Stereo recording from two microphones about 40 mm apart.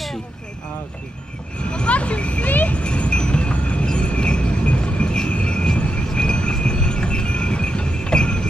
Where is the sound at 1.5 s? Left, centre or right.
Left.